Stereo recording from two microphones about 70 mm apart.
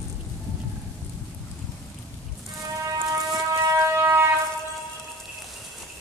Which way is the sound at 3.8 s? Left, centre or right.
Right.